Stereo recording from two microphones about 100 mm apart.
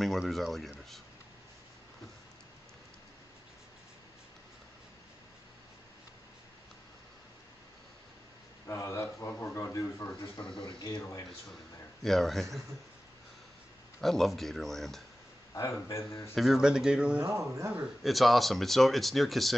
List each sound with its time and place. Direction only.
0.3 s speech: centre (ahead or behind)
8.6 s speech: 30° left (ahead or behind)
10.6 s speech: 50° left (ahead or behind)
12.0 s speech: centre (ahead or behind)
14.0 s speech: centre (ahead or behind)
15.5 s speech: 30° left (ahead or behind)
16.3 s speech: 5° right (ahead or behind)
17.2 s speech: 30° right (ahead or behind)
18.0 s speech: centre (ahead or behind)